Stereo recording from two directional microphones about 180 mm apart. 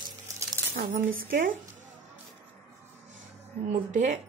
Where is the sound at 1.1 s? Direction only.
50° right (ahead or behind).